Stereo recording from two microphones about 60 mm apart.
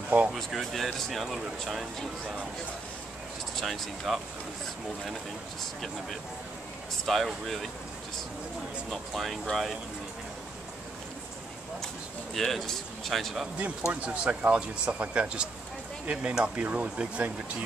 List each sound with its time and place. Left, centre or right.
0.3 s speech: centre
3.5 s speech: centre
5.6 s speech: centre
8.9 s speech: centre
12.4 s speech: centre
13.6 s speech: right